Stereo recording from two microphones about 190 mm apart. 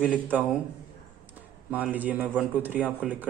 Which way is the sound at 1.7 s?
10° right (ahead or behind).